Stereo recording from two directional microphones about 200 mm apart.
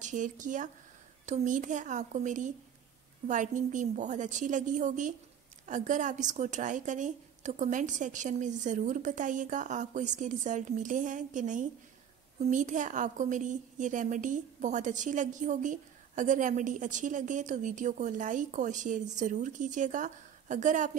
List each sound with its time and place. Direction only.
0.0 s a woman's voice: 40° right (ahead or behind)